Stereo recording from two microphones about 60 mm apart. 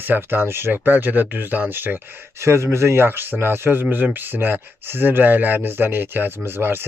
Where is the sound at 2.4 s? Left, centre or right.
Right.